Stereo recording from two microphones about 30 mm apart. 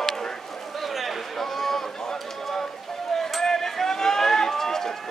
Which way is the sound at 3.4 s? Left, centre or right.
Centre.